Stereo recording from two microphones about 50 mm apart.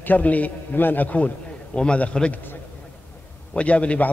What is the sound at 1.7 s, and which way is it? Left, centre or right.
Speech, left.